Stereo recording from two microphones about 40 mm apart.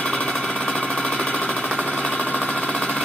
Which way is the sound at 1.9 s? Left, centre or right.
Left.